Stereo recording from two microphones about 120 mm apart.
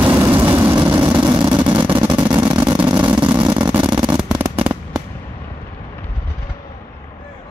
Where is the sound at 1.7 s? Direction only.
45° right (ahead or behind).